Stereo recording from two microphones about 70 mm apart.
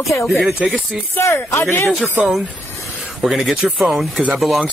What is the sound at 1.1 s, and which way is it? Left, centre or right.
Speech, left.